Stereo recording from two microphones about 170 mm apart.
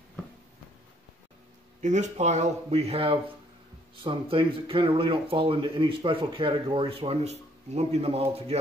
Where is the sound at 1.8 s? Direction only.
45° right (ahead or behind).